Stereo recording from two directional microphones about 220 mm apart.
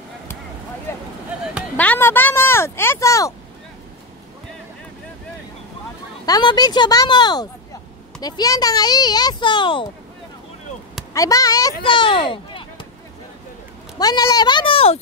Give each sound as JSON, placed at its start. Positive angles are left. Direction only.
{"t": 0.9, "sound": "a sound", "side_deg": 10}
{"t": 6.2, "sound": "speech", "side_deg": 15}
{"t": 11.1, "sound": "a child's voice", "side_deg": 15}
{"t": 13.9, "sound": "speech", "side_deg": 15}